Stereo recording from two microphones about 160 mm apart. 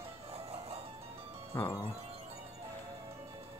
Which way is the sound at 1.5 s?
15° left (ahead or behind).